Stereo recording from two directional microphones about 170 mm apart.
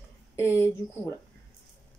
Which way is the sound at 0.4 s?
15° left (ahead or behind).